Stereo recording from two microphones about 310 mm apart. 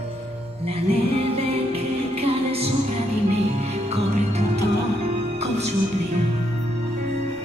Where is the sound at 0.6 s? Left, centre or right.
Centre.